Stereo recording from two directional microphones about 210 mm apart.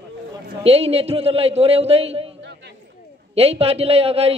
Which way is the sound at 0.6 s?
30° right (ahead or behind).